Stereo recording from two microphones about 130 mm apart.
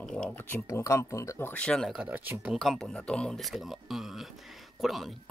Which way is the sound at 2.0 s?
10° right (ahead or behind).